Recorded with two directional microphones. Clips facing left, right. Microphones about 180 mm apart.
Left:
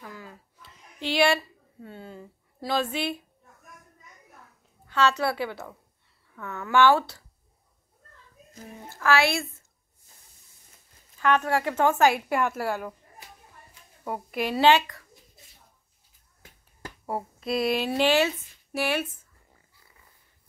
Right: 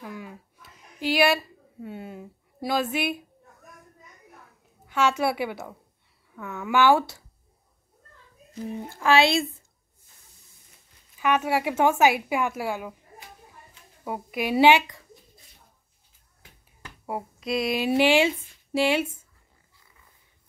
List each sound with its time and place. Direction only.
0.0 s a sound: 15° right (ahead or behind)
4.8 s a woman's voice: 10° right (ahead or behind)
8.6 s speech: 20° right (ahead or behind)
11.1 s a woman's voice: 10° right (ahead or behind)
14.0 s a woman's voice: 5° right (ahead or behind)
17.0 s speech: centre (ahead or behind)
17.8 s speech: 10° right (ahead or behind)